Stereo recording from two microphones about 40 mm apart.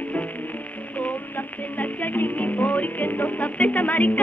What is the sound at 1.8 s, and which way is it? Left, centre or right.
Music, left.